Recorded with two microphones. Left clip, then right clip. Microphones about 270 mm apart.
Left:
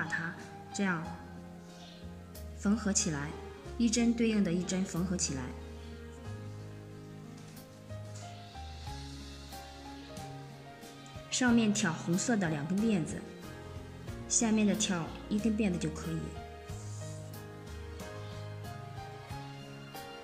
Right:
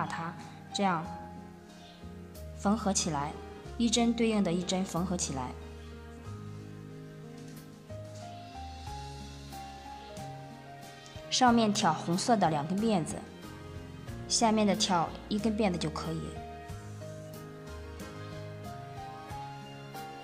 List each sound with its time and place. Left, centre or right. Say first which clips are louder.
0.0 s music: even; centre
2.6 s speech: right 3 dB; centre
11.2 s speech: right 5 dB; centre
14.3 s speech: right 4 dB; centre